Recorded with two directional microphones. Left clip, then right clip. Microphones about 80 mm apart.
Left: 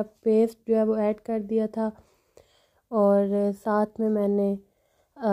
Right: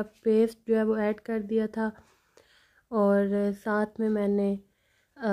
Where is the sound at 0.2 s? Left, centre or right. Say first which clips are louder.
Left 2 dB; centre.